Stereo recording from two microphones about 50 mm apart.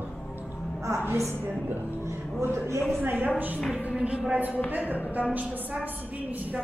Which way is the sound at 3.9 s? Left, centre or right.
Right.